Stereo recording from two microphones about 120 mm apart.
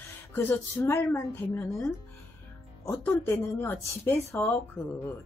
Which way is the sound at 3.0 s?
15° left (ahead or behind).